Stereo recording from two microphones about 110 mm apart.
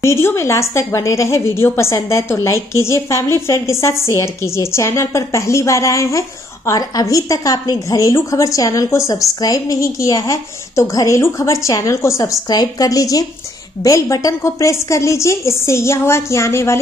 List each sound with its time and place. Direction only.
0.0 s a woman's voice: 25° left (ahead or behind)